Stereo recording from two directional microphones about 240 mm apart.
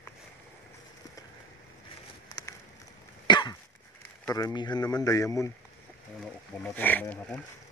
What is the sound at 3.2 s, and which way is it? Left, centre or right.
Cough, centre.